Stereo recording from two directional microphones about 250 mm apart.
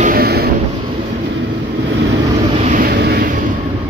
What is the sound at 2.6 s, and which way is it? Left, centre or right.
Vehicle, right.